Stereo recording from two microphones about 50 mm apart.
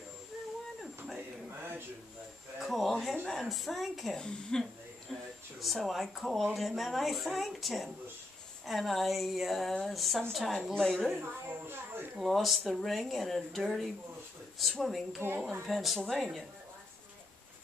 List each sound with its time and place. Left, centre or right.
2.6 s speech: centre
4.2 s speech: centre
5.6 s speech: centre
10.7 s speech: centre
11.1 s speech: right
11.6 s a sound: right
12.2 s speech: centre